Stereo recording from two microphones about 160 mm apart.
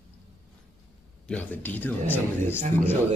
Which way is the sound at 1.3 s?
10° left (ahead or behind).